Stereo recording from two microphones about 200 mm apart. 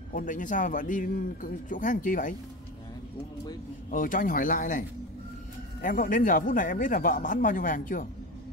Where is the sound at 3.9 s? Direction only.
45° left (ahead or behind).